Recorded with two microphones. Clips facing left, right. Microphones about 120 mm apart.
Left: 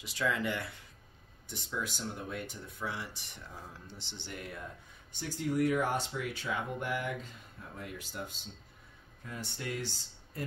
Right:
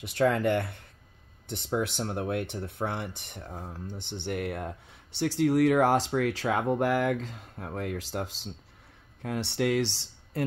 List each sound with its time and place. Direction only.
0.0 s speech: 60° right (ahead or behind); by 10.4 s 90° right